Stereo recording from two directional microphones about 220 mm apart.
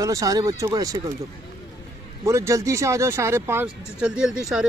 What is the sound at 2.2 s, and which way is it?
Speech, 15° right (ahead or behind).